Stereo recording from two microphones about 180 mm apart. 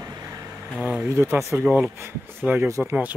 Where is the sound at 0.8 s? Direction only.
5° right (ahead or behind).